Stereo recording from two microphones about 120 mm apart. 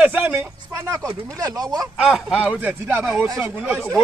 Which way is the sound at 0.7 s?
30° right (ahead or behind).